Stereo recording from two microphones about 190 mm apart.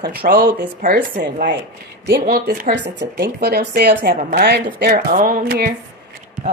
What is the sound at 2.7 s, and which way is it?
A woman's voice, 65° right (ahead or behind).